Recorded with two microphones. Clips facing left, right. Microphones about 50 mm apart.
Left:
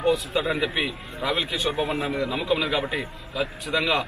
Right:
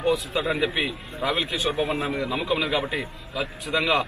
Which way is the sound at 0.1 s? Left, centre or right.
Centre.